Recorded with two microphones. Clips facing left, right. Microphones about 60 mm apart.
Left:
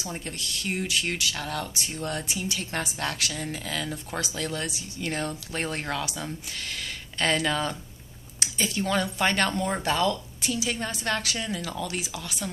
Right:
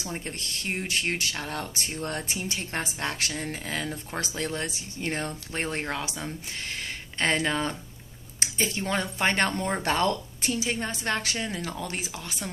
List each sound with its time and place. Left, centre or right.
0.1 s speech: right
9.8 s speech: right